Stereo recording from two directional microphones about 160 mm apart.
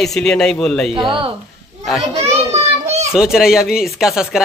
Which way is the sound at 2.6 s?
40° right (ahead or behind).